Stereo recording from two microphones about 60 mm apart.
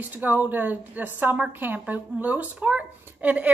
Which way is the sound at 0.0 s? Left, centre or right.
Right.